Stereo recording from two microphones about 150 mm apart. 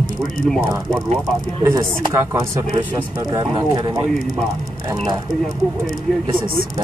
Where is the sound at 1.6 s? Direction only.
20° right (ahead or behind).